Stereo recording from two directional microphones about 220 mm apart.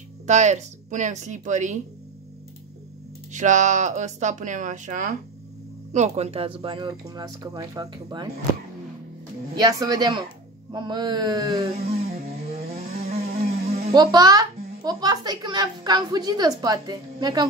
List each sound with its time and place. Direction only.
0.3 s speech: 30° right (ahead or behind)
3.3 s speech: 35° right (ahead or behind)
9.6 s speech: 15° right (ahead or behind)
10.7 s a sound: 20° right (ahead or behind)
13.3 s a sound: 45° right (ahead or behind)
13.9 s speech: 15° right (ahead or behind)